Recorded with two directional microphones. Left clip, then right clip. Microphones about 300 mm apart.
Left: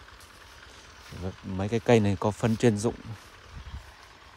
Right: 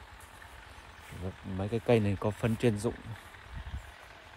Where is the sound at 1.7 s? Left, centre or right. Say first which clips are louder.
Left 5 dB; left.